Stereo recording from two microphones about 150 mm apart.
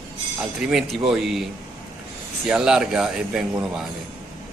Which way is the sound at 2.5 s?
5° right (ahead or behind).